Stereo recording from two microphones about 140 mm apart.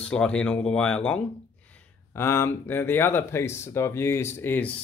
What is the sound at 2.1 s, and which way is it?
Speech, 20° left (ahead or behind).